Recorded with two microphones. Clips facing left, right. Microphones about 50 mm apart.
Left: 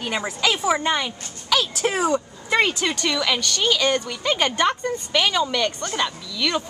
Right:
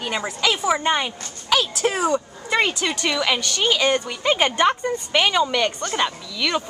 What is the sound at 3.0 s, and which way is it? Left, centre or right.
Speech, centre.